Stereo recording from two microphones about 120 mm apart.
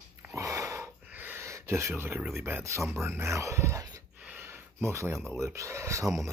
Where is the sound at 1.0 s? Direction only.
15° right (ahead or behind).